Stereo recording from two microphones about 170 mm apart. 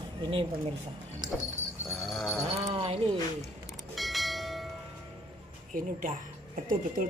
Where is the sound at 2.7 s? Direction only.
35° right (ahead or behind).